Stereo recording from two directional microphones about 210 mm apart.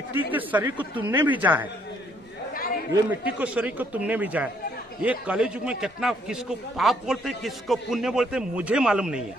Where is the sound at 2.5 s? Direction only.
45° left (ahead or behind).